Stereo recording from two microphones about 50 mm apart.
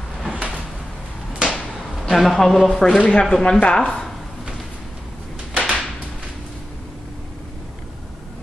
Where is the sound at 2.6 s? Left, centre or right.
Centre.